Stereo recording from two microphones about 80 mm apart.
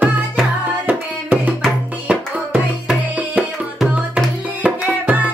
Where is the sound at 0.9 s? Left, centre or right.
Right.